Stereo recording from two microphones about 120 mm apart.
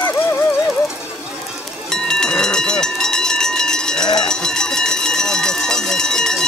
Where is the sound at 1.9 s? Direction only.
5° left (ahead or behind).